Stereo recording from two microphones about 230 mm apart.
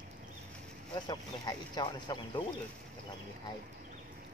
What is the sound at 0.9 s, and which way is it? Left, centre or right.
Speech, centre.